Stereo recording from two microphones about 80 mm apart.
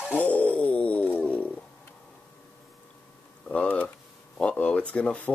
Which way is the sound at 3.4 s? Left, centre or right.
Centre.